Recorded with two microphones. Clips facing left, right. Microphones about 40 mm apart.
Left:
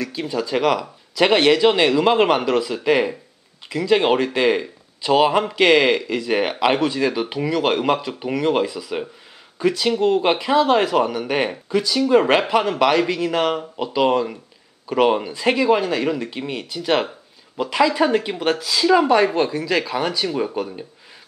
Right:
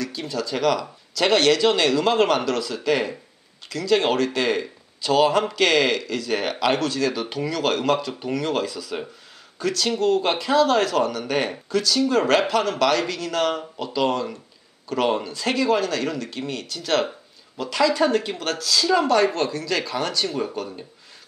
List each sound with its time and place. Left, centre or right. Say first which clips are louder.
0.0 s speech: left 3 dB; centre